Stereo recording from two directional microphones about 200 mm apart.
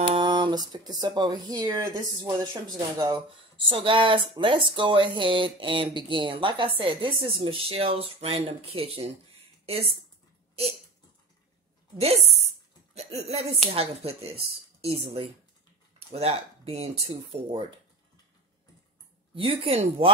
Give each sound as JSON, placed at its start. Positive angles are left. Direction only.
{"t": 0.1, "sound": "speech", "side_deg": -20}
{"t": 12.9, "sound": "speech", "side_deg": -30}
{"t": 19.3, "sound": "speech", "side_deg": -30}